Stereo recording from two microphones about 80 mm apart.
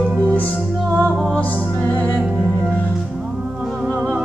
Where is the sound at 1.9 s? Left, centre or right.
Left.